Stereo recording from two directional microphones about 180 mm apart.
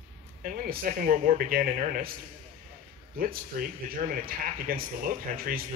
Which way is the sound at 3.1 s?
50° right (ahead or behind).